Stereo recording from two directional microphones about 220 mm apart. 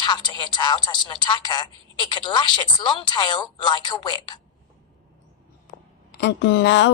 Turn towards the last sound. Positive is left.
turn(degrees=55)  # may be behind; listen again after turning